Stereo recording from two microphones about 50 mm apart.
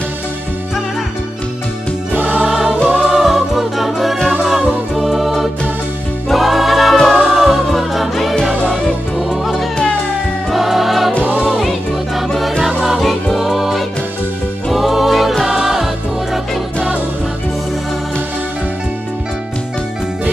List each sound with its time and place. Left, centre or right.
3.0 s music: centre
4.4 s music: centre
4.9 s music: centre